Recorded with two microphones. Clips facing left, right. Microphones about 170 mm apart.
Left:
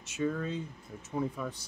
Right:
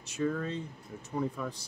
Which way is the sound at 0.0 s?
Centre (ahead or behind).